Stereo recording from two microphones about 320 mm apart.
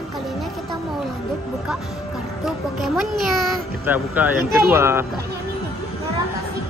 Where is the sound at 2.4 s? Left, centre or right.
Centre.